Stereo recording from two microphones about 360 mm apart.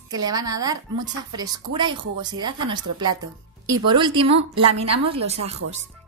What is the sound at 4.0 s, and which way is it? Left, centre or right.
Speech, centre.